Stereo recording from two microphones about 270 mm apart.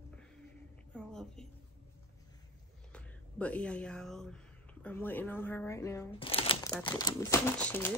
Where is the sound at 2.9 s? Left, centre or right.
Centre.